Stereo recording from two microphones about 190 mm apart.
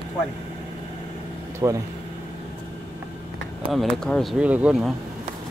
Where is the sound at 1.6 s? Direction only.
20° right (ahead or behind).